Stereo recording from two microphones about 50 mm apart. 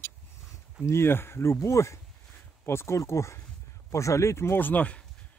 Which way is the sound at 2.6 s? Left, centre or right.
Left.